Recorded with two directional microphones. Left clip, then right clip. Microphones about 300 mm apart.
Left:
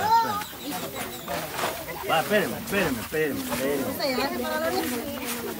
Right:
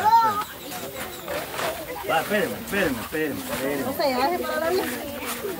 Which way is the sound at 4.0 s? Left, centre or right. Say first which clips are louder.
Right 6 dB; right.